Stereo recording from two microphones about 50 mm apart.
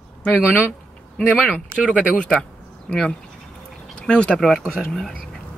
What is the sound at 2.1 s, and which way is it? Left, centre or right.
Speech, left.